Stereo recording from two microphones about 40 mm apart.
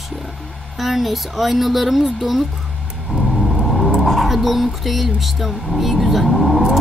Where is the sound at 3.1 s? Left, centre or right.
Left.